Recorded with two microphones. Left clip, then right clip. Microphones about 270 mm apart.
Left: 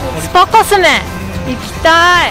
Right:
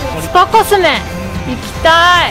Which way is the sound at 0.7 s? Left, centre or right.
Centre.